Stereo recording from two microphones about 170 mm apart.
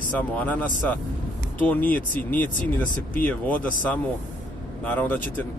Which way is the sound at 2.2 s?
55° left (ahead or behind).